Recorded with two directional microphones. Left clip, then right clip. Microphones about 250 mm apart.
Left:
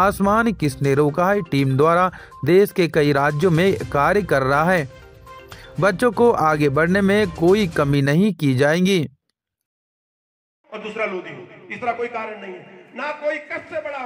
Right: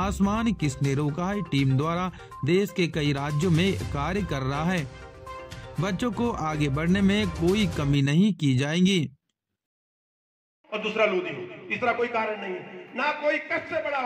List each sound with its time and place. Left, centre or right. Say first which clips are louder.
0.0 s speech: left 11 dB; left
10.7 s a man's voice: right 1 dB; right